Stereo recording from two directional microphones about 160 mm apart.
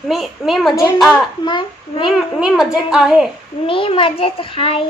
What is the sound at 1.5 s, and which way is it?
Speech, 30° left (ahead or behind).